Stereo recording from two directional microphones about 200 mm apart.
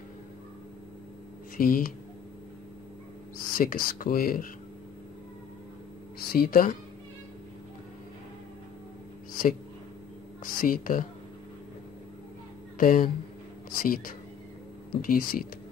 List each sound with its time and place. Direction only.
1.6 s speech: 45° left (ahead or behind)
3.3 s speech: 45° left (ahead or behind)
6.1 s speech: 50° left (ahead or behind)
9.3 s a sound: 45° left (ahead or behind)
10.4 s speech: 45° left (ahead or behind)
12.7 s speech: 45° left (ahead or behind)